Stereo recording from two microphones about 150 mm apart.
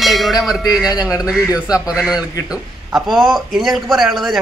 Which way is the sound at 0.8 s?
25° left (ahead or behind).